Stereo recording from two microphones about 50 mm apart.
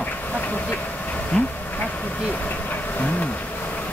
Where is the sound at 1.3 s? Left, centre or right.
Left.